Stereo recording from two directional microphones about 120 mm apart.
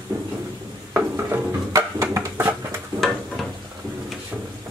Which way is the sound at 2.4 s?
20° right (ahead or behind).